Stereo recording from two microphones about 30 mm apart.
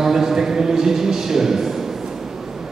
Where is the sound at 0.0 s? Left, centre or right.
Centre.